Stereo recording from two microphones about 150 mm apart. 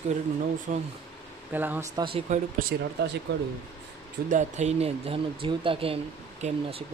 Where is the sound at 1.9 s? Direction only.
35° right (ahead or behind).